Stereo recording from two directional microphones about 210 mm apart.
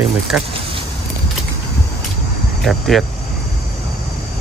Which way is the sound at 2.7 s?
Centre (ahead or behind).